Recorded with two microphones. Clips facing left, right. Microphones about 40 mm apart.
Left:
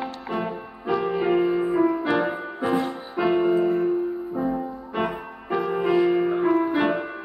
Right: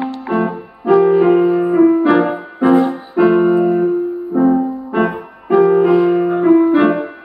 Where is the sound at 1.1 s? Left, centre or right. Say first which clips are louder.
Right 10 dB; centre.